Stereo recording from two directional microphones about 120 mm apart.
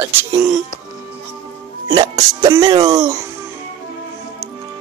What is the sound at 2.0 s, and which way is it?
Speech, 30° right (ahead or behind).